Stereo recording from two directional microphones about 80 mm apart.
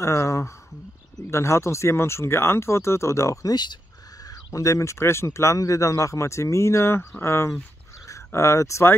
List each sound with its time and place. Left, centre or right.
0.0 s speech: left